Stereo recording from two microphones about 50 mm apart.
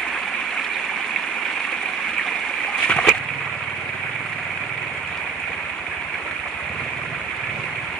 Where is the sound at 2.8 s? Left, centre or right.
Left.